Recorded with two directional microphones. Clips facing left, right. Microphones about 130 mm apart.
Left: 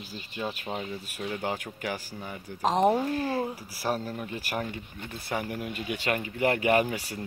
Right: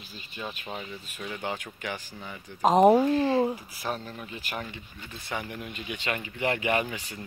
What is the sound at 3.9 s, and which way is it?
Speech, 25° left (ahead or behind).